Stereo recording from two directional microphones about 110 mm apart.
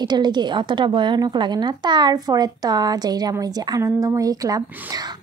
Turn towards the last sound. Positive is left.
turn(degrees=-35)  # may be behind; listen again after turning